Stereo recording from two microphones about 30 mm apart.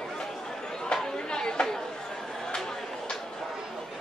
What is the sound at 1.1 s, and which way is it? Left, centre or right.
Chatter, left.